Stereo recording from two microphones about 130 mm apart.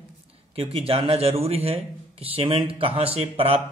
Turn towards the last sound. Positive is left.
turn(degrees=-50)  # may be behind; listen again after turning